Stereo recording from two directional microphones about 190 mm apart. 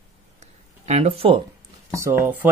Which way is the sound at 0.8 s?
35° right (ahead or behind).